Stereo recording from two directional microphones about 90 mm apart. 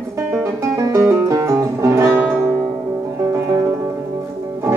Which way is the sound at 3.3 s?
30° right (ahead or behind).